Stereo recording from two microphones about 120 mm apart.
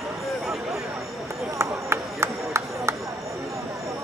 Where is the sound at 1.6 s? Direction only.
20° right (ahead or behind).